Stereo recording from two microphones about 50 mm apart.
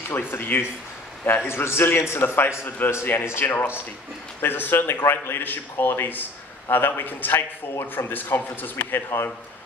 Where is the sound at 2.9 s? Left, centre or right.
Left.